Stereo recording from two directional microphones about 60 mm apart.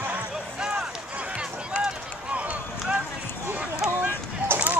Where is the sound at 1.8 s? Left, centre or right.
Right.